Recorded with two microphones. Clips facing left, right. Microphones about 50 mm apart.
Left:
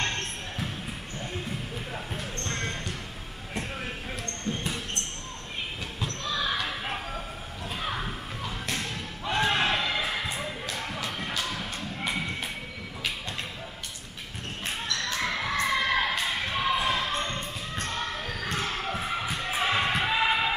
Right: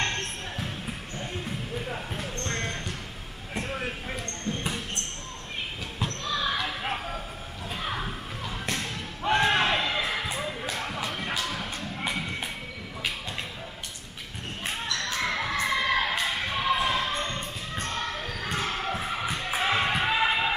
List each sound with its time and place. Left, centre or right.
0.0 s basketball bounce: centre
1.9 s basketball bounce: centre
3.5 s vehicle: centre
4.5 s basketball bounce: centre
6.0 s basketball bounce: centre
7.7 s a sound: centre
9.2 s a sound: centre
9.5 s crowd: centre
10.3 s a sound: centre
15.1 s children shouting: centre
15.7 s crowd: centre
16.7 s basketball bounce: centre
19.4 s music: centre